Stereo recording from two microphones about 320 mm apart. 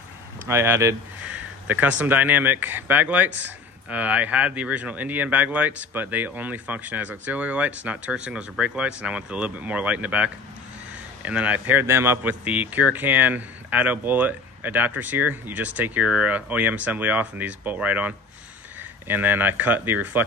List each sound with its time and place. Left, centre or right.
0.5 s speech: centre
3.3 s a man's voice: right
3.9 s speech: centre